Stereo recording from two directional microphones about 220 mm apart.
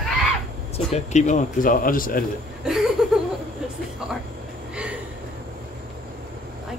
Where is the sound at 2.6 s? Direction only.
Centre (ahead or behind).